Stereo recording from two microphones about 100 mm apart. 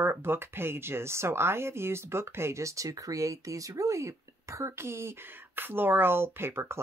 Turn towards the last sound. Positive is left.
turn(degrees=-25)  # may be behind; listen again after turning